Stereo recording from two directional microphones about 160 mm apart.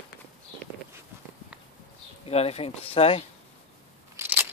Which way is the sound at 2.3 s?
40° left (ahead or behind).